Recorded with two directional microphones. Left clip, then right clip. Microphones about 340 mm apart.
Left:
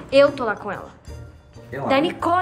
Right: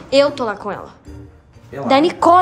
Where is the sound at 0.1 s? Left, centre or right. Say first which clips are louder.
Right 1 dB; centre.